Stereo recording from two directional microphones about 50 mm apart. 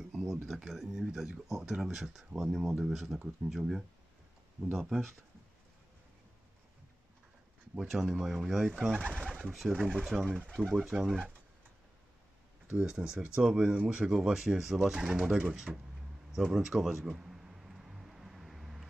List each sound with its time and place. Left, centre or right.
0.1 s speech: centre
7.8 s speech: centre
12.7 s speech: centre
16.3 s a sound: centre